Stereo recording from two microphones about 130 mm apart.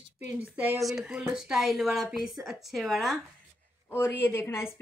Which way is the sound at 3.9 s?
15° left (ahead or behind).